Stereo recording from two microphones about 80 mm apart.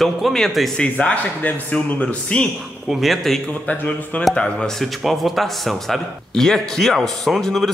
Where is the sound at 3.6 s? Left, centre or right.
Centre.